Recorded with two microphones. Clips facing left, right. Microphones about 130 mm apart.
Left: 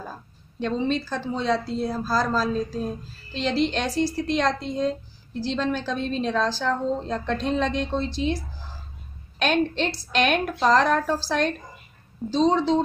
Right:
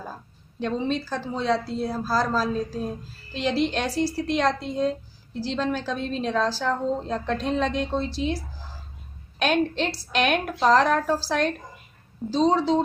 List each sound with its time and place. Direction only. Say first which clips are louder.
0.6 s a woman's voice: left 1 dB; 5° right (ahead or behind)
9.4 s a woman's voice: even; 5° right (ahead or behind)